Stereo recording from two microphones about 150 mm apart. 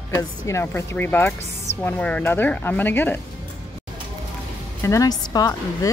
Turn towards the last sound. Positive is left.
turn(degrees=25)  # may be behind; listen again after turning